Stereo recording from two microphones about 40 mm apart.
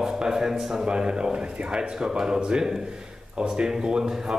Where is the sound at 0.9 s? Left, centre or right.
Right.